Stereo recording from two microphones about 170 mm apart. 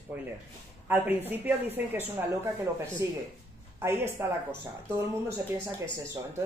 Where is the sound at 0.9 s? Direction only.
10° right (ahead or behind).